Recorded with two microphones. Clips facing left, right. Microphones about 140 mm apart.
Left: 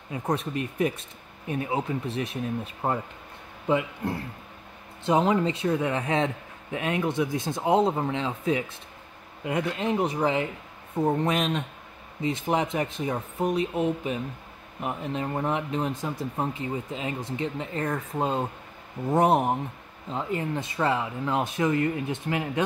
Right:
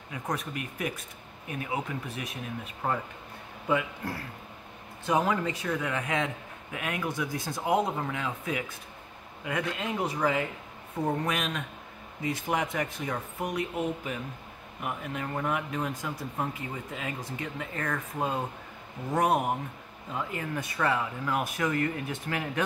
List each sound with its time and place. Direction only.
0.1 s a man's voice: 30° left (ahead or behind)